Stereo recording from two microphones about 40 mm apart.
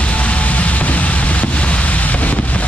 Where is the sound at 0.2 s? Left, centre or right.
Left.